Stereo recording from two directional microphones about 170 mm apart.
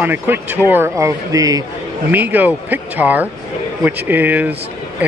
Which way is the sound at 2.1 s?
10° right (ahead or behind).